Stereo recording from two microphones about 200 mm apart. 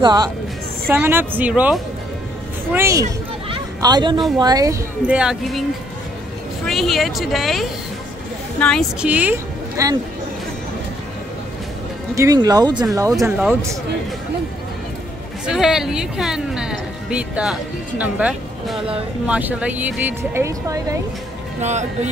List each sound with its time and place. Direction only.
0.0 s speech: 20° right (ahead or behind)
0.9 s speech: 10° right (ahead or behind)
3.4 s a sound: 20° right (ahead or behind)
4.4 s speech: 20° right (ahead or behind)
5.0 s speech: 5° right (ahead or behind)
6.6 s a woman's voice: centre (ahead or behind)
12.2 s speech: 15° right (ahead or behind)
15.4 s speech: centre (ahead or behind)
21.5 s speech: 35° right (ahead or behind)